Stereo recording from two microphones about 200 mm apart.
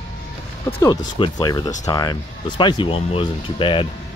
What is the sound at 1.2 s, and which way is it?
Speech, 20° left (ahead or behind).